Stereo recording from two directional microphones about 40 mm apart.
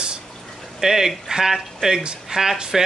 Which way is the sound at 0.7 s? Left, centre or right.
Centre.